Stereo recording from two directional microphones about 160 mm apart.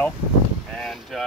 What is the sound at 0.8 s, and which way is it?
Speech, centre (ahead or behind).